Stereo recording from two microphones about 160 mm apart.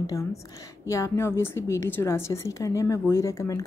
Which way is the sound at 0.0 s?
20° left (ahead or behind).